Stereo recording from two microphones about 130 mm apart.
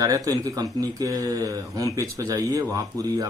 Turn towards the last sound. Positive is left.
turn(degrees=-30)  # may be behind; listen again after turning